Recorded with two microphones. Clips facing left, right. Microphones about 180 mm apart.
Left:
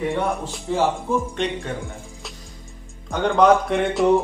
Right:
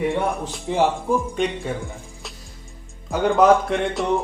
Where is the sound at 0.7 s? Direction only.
15° right (ahead or behind).